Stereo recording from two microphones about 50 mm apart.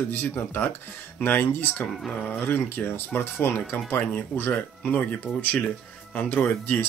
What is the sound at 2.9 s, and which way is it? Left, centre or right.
Speech, left.